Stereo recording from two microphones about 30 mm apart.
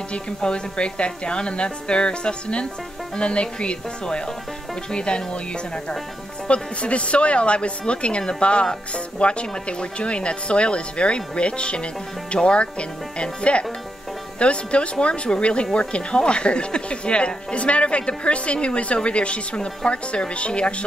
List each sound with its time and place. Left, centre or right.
0.4 s speech: left
6.4 s speech: left